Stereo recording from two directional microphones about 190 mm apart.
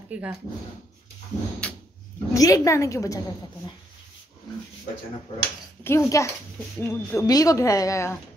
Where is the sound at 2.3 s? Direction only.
15° left (ahead or behind).